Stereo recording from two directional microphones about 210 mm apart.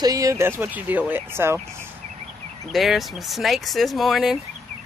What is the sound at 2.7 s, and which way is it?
Speech, centre (ahead or behind).